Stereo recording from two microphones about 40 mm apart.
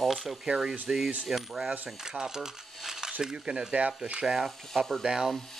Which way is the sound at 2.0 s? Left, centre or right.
Centre.